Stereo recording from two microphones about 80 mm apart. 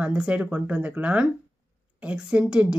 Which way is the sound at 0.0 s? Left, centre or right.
Centre.